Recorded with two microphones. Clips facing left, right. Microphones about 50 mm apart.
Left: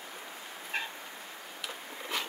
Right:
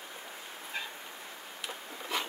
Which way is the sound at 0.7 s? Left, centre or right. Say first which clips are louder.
Left 4 dB; left.